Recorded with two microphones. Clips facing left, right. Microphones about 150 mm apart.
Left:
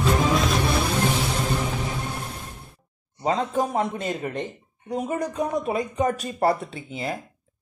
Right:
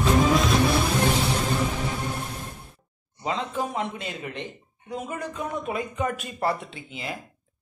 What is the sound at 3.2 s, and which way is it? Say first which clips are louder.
A man's voice: left 5 dB; 40° left (ahead or behind).